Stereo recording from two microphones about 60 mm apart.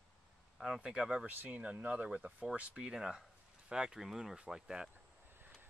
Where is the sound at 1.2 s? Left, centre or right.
Right; by 4.9 s centre.